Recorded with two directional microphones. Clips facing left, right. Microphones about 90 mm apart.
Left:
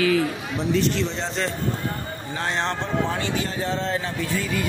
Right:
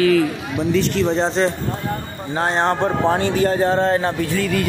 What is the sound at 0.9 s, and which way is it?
A man's voice, 45° right (ahead or behind).